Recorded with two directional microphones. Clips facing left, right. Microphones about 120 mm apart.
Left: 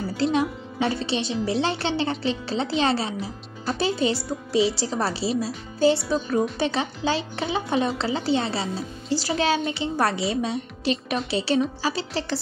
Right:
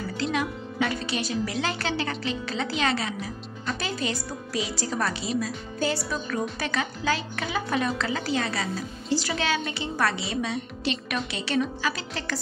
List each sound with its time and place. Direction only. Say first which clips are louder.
0.2 s a woman's voice: left 5 dB; 30° left (ahead or behind)